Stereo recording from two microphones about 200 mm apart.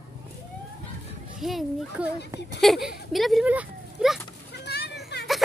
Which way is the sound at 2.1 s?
55° left (ahead or behind).